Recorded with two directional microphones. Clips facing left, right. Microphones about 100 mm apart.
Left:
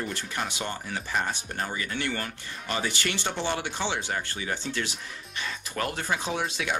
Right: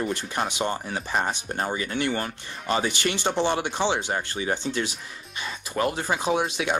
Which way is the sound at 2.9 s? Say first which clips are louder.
Right 5 dB; 20° right (ahead or behind).